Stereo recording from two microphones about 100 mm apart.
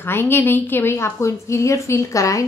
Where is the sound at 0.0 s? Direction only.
25° left (ahead or behind).